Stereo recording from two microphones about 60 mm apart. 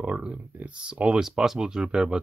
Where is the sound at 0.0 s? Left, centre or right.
Centre.